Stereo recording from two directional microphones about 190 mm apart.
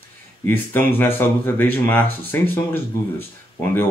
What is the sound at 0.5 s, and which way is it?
Speech, 10° left (ahead or behind).